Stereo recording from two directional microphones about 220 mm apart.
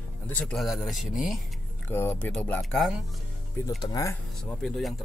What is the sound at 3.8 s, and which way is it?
Speech, 15° left (ahead or behind).